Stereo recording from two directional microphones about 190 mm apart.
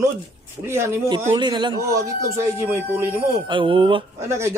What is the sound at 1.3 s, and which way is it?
Speech, 25° right (ahead or behind).